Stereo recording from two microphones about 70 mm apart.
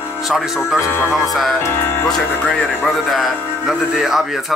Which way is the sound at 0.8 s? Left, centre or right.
Left.